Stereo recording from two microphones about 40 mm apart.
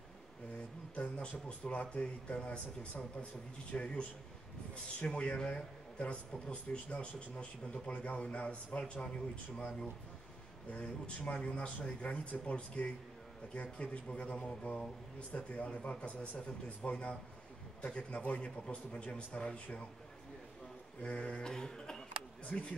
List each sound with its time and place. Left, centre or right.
0.9 s speech: left
3.7 s speech: left
5.0 s speech: left
10.7 s speech: left
21.0 s speech: left
21.5 s cough: centre
22.5 s speech: centre